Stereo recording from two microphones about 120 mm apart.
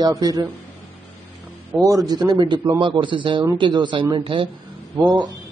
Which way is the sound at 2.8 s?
45° right (ahead or behind).